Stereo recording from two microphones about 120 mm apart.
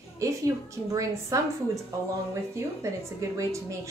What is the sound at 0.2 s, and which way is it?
A woman's voice, 25° right (ahead or behind).